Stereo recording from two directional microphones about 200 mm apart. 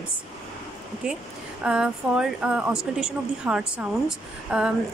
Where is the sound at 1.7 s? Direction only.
5° right (ahead or behind).